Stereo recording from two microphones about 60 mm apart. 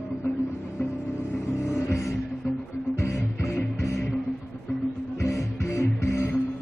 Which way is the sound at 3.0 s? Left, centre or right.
Left.